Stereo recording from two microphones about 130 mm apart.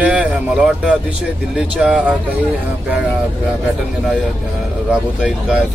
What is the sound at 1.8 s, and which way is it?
Speech, 10° right (ahead or behind).